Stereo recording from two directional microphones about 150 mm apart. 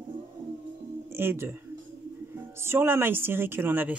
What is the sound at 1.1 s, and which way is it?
A man's voice, 15° right (ahead or behind).